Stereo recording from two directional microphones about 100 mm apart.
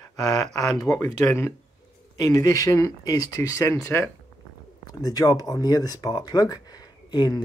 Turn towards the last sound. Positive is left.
turn(degrees=45)  # may be behind; listen again after turning